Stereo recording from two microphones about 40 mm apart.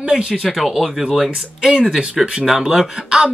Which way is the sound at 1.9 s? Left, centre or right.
Centre.